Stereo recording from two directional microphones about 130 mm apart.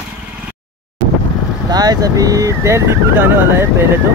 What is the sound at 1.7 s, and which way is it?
Speech, 30° right (ahead or behind).